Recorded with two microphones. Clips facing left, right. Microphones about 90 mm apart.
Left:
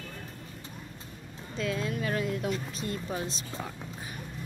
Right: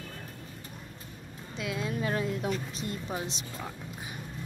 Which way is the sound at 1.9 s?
25° right (ahead or behind).